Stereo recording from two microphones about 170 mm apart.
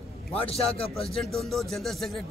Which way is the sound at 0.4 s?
35° left (ahead or behind).